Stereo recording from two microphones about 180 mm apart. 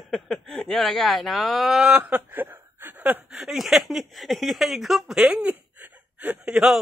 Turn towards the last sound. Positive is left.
turn(degrees=-5)  # may be behind; listen again after turning